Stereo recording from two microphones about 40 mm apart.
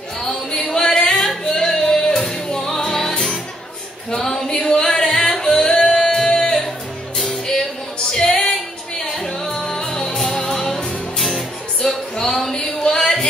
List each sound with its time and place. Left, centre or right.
0.2 s singing: centre
1.7 s music: centre
4.1 s a sound: centre
4.8 s music: centre
8.1 s female singing: centre
9.1 s music: centre